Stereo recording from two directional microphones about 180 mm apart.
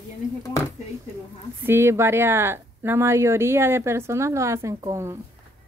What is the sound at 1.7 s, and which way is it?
Speech, 15° right (ahead or behind).